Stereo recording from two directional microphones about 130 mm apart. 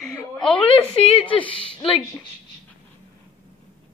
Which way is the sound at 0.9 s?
45° left (ahead or behind).